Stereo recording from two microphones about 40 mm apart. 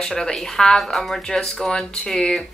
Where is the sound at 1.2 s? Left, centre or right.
Centre.